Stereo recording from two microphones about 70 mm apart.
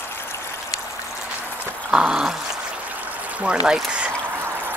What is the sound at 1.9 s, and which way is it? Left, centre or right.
Speech, centre.